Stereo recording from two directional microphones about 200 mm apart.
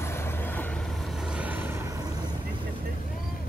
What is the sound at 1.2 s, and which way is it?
Vehicle, 5° right (ahead or behind).